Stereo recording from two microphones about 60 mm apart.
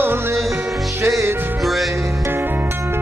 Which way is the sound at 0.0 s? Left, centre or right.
Right.